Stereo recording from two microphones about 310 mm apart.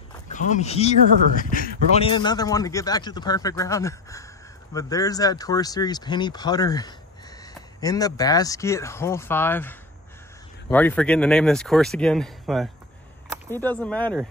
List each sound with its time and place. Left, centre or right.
0.3 s speech: left
2.0 s speech: centre